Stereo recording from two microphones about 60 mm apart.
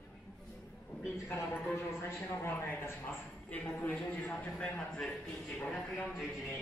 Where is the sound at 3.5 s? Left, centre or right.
Left.